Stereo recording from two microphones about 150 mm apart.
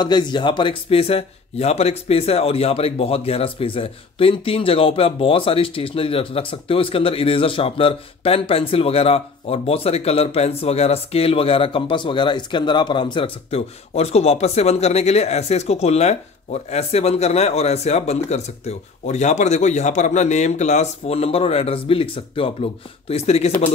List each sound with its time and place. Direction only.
0.0 s a man's voice: 30° left (ahead or behind)